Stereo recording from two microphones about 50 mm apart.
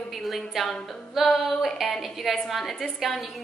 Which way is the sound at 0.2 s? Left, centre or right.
Centre.